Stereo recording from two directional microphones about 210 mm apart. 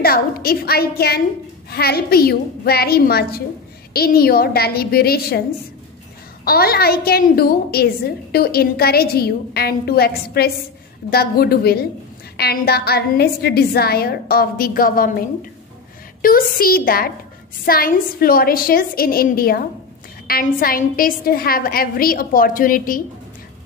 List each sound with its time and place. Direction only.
0.0 s a woman's voice: 45° left (ahead or behind)
6.4 s a woman's voice: 45° left (ahead or behind)
16.2 s a woman's voice: 45° left (ahead or behind)